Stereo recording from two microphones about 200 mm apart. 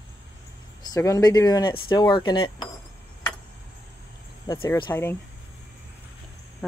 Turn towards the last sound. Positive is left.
turn(degrees=15)  # may be behind; listen again after turning